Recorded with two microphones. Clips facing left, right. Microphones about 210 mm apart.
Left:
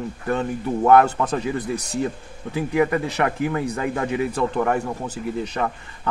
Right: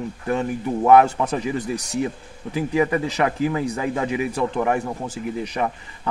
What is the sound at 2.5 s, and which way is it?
Speech, 20° right (ahead or behind).